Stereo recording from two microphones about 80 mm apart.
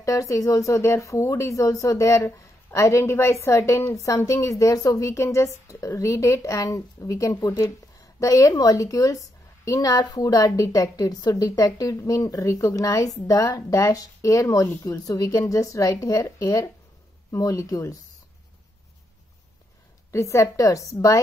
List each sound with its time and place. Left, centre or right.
0.0 s a woman's voice: left
20.1 s speech: left